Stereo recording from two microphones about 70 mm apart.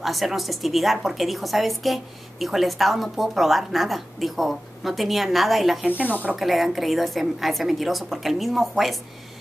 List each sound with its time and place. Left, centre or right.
0.0 s a woman's voice: centre
6.0 s speech: left
6.3 s a woman's voice: centre